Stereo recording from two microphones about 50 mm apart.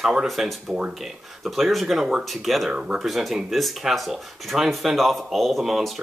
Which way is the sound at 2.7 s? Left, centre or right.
Centre.